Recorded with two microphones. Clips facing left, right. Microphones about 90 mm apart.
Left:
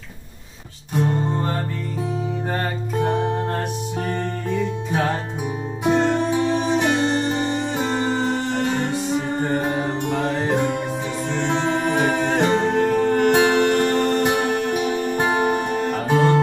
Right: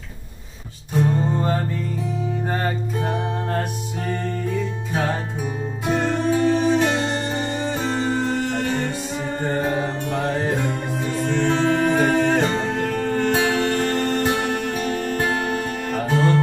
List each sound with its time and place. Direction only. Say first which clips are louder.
5.9 s music: left 2 dB; 20° left (ahead or behind)